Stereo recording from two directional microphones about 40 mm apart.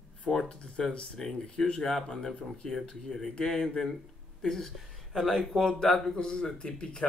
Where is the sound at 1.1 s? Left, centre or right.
Centre.